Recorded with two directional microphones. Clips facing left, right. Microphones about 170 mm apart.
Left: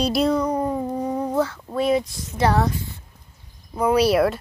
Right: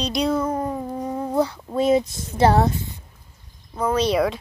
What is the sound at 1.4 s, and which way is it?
Speech, 15° right (ahead or behind).